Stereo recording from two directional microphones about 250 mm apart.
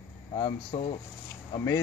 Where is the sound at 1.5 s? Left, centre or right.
Centre.